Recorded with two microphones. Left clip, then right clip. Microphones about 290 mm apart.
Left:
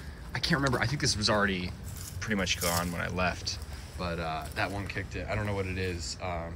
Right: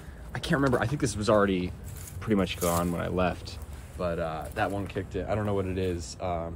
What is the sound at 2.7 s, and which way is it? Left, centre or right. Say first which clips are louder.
Speech: right 3 dB; right.